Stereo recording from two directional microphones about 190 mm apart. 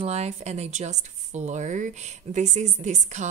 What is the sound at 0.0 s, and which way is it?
A woman's voice, 35° right (ahead or behind).